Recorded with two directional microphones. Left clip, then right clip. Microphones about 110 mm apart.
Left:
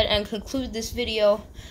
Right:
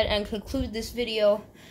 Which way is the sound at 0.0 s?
10° left (ahead or behind).